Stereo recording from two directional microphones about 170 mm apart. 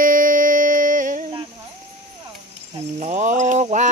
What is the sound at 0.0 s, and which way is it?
Music, 55° right (ahead or behind).